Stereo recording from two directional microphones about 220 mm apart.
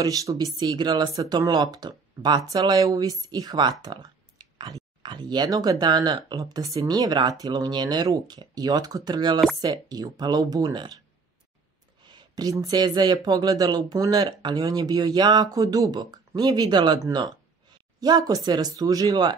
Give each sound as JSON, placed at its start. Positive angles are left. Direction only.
{"t": 0.0, "sound": "speech", "side_deg": -15}
{"t": 12.1, "sound": "speech", "side_deg": -20}